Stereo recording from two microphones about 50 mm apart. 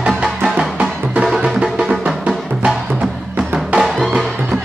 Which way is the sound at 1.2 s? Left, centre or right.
Centre.